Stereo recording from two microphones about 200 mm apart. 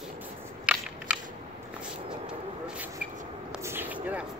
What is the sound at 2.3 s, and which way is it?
Speech, 5° right (ahead or behind).